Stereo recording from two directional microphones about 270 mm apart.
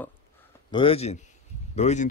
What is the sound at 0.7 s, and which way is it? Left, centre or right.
A man's voice, left.